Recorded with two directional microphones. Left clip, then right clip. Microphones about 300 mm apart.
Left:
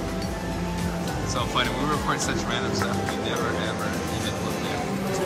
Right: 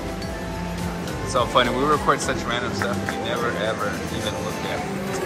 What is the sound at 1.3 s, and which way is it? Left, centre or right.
Speech, centre.